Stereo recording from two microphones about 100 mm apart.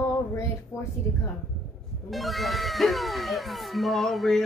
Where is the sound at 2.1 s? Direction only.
Centre (ahead or behind).